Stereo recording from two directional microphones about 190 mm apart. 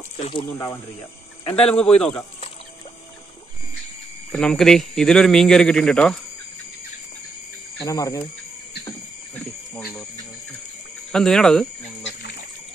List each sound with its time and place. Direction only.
1.4 s speech: 30° left (ahead or behind)
1.7 s speech: 5° left (ahead or behind)
4.3 s speech: centre (ahead or behind)
7.8 s speech: 20° left (ahead or behind)
9.3 s cricket: 5° left (ahead or behind)
11.1 s speech: 5° left (ahead or behind)